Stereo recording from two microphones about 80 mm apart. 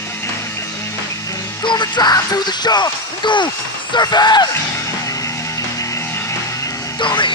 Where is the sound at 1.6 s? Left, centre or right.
Left.